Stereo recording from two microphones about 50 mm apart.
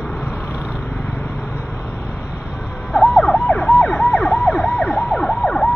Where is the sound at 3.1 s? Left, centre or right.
Left.